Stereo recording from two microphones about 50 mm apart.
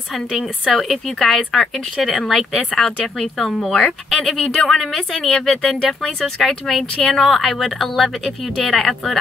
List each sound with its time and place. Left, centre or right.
0.7 s speech: centre
3.7 s speech: left
4.2 s speech: centre
6.4 s speech: centre
7.0 s speech: centre
7.2 s speech: centre